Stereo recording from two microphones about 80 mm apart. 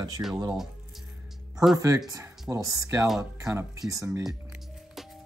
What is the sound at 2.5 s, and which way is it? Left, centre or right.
Speech, right.